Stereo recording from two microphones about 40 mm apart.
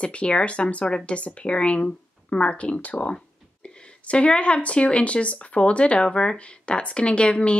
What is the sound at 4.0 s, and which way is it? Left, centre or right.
Speech, left.